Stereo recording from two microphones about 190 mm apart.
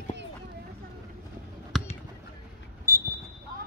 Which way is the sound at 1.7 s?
Centre (ahead or behind).